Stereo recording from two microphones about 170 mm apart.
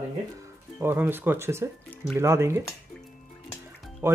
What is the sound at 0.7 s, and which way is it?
Speech, 10° right (ahead or behind).